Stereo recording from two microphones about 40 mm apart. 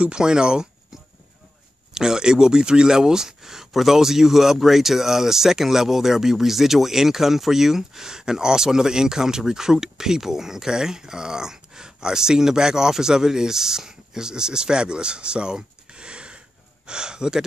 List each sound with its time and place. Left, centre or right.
0.0 s speech: centre
2.0 s speech: centre